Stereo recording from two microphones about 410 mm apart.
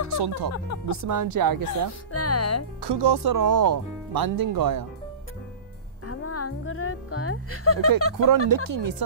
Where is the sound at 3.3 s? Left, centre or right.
Right.